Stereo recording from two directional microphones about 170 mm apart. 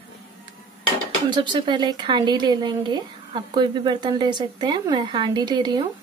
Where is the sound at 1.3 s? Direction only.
25° right (ahead or behind).